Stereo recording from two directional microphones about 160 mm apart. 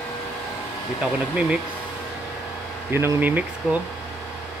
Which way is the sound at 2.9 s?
15° right (ahead or behind).